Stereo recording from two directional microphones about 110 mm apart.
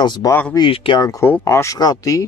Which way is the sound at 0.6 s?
45° left (ahead or behind).